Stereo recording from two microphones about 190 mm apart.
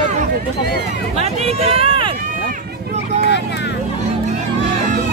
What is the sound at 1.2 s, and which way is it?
Run, 35° right (ahead or behind).